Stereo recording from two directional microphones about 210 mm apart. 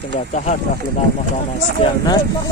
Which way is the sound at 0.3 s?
35° left (ahead or behind).